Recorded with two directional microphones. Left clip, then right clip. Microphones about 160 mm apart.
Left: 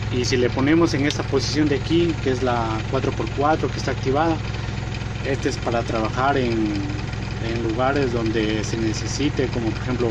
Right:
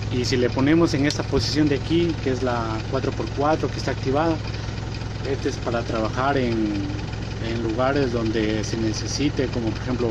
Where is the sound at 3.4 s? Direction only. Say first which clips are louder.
Left 1 dB; 15° right (ahead or behind).